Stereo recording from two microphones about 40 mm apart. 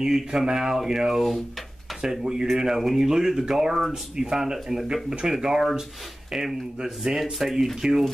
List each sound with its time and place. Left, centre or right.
0.0 s speech: centre